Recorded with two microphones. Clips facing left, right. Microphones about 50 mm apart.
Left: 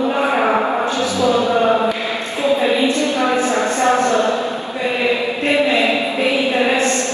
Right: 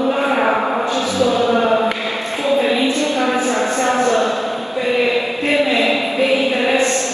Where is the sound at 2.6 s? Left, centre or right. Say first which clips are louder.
Left 1 dB; left.